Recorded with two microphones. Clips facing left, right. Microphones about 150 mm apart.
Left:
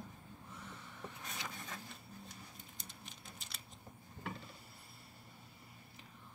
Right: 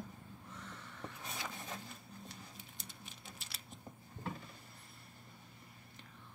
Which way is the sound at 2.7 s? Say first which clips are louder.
Right 1 dB; 5° right (ahead or behind).